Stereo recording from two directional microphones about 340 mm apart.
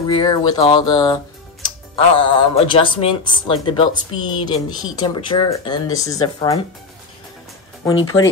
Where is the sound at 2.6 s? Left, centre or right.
Centre.